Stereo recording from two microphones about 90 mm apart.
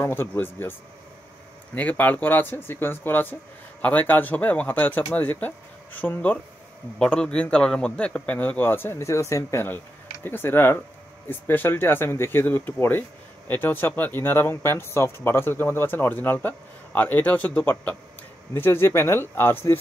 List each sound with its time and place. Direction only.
0.0 s speech: 25° left (ahead or behind)
1.8 s a man's voice: 20° left (ahead or behind)